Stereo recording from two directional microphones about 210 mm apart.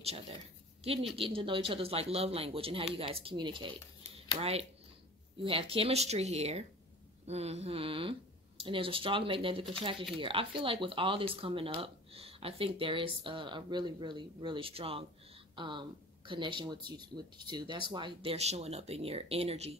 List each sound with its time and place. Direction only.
1.1 s speech: 25° right (ahead or behind)